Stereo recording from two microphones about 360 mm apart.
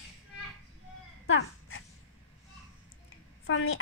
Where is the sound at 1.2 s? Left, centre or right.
Left.